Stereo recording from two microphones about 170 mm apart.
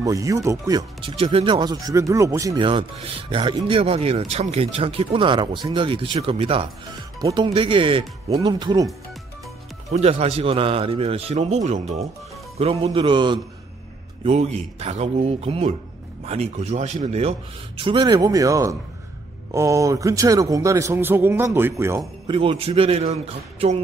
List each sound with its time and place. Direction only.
0.0 s speech: 20° right (ahead or behind); by 6.7 s 35° right (ahead or behind)
7.2 s speech: 20° right (ahead or behind)
7.4 s a man's voice: 30° right (ahead or behind)
9.8 s a man's voice: 40° right (ahead or behind)
14.2 s a man's voice: 40° right (ahead or behind); by 22.0 s 15° right (ahead or behind)
22.3 s a man's voice: 30° right (ahead or behind)